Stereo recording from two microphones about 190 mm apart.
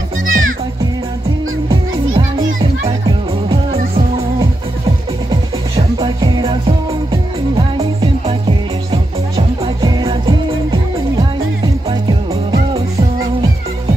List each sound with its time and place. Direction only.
0.3 s music: 90° right
1.7 s music: 25° right (ahead or behind)
5.3 s music: 25° right (ahead or behind)